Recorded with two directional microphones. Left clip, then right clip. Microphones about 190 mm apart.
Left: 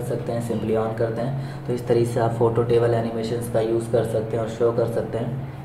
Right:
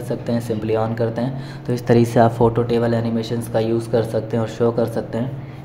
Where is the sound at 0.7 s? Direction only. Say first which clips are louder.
Right 2 dB; 55° right (ahead or behind).